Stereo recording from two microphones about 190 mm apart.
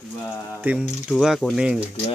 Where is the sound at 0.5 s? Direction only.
5° right (ahead or behind).